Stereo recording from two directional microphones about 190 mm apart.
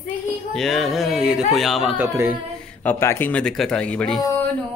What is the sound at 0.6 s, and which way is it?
Speech, centre (ahead or behind).